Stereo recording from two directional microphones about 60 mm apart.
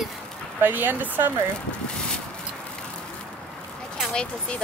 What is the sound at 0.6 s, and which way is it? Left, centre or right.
Speech, right.